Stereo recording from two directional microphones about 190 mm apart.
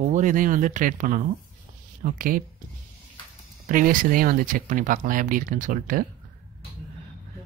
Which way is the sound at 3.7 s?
45° right (ahead or behind).